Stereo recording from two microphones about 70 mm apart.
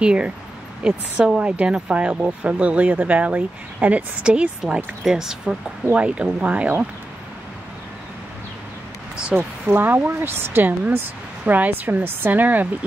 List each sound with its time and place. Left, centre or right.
0.0 s speech: centre
9.4 s speech: right